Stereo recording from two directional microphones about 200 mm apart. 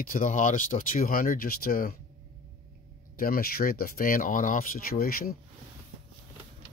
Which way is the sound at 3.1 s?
45° left (ahead or behind).